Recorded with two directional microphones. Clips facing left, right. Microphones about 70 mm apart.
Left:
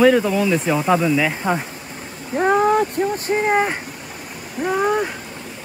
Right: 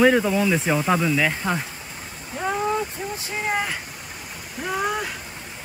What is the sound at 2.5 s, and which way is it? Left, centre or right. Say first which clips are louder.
Speech: left 8 dB; left.